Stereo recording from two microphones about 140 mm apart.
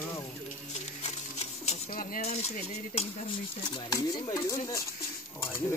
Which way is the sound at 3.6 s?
30° left (ahead or behind).